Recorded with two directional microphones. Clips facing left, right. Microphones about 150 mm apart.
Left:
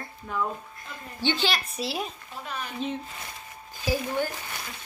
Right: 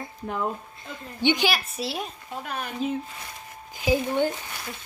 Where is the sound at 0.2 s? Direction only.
50° right (ahead or behind).